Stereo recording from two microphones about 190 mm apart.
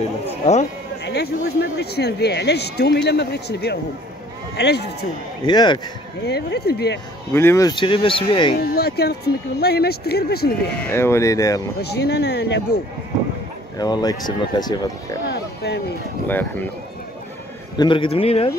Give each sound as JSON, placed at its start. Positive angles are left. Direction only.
{"t": 0.2, "sound": "speech", "side_deg": 35}
{"t": 1.0, "sound": "speech", "side_deg": 60}
{"t": 5.4, "sound": "speech", "side_deg": 25}
{"t": 6.2, "sound": "speech", "side_deg": 60}
{"t": 7.3, "sound": "speech", "side_deg": 15}
{"t": 8.5, "sound": "speech", "side_deg": 55}
{"t": 10.9, "sound": "speech", "side_deg": 15}
{"t": 11.8, "sound": "speech", "side_deg": 60}
{"t": 13.7, "sound": "speech", "side_deg": 20}
{"t": 15.3, "sound": "a sound", "side_deg": 55}
{"t": 16.3, "sound": "speech", "side_deg": 10}
{"t": 17.7, "sound": "speech", "side_deg": 25}